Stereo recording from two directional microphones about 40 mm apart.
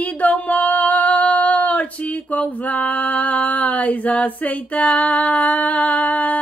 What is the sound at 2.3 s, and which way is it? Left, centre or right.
Female singing, left.